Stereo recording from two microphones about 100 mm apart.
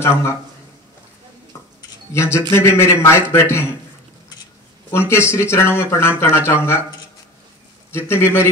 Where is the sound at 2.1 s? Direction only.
25° left (ahead or behind).